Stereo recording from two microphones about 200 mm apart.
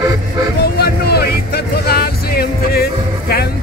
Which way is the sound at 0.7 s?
55° left (ahead or behind).